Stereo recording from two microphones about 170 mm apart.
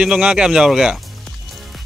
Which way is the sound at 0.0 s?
5° right (ahead or behind).